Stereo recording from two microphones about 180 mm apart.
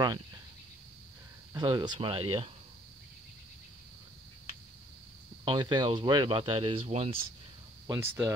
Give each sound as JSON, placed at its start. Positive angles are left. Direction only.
{"t": 1.5, "sound": "speech", "side_deg": -25}
{"t": 5.4, "sound": "speech", "side_deg": -25}
{"t": 7.8, "sound": "speech", "side_deg": -20}